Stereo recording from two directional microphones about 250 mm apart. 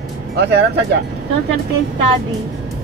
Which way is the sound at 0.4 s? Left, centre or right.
Right.